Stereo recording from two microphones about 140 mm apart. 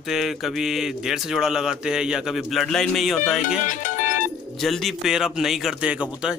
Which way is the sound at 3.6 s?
65° left (ahead or behind).